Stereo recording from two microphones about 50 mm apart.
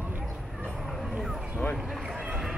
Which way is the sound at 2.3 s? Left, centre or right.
Centre.